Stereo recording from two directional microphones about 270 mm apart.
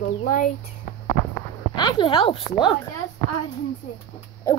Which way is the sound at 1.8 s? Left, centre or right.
Centre.